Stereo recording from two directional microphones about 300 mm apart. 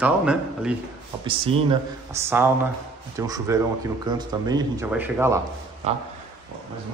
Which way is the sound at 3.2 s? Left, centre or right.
Centre.